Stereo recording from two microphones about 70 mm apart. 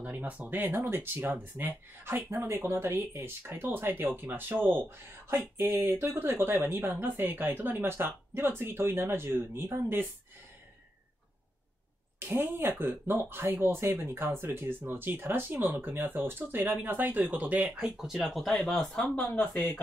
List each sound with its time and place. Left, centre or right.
0.0 s speech: centre; by 9.7 s right
12.2 s speech: right
17.9 s speech: centre
19.1 s speech: left